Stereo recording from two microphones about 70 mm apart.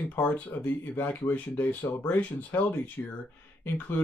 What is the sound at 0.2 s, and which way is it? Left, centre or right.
Speech, left.